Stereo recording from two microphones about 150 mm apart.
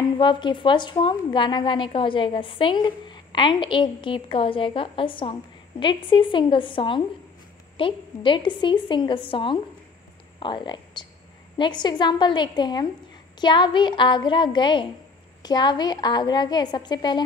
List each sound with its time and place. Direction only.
0.2 s a woman's voice: 30° left (ahead or behind)